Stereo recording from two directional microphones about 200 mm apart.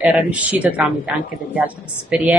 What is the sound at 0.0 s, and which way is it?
A woman's voice, 5° right (ahead or behind).